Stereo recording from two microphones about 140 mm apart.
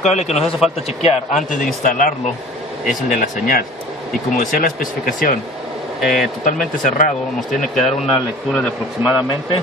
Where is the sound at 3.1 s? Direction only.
85° left.